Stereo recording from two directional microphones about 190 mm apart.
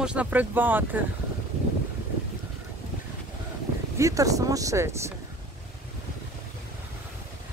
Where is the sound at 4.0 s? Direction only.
15° right (ahead or behind).